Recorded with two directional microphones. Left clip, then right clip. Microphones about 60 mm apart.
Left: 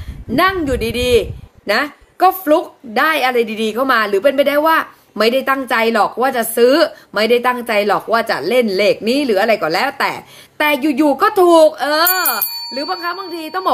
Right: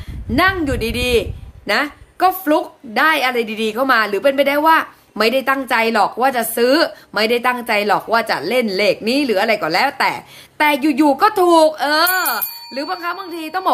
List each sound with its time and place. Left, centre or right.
0.4 s a woman's voice: right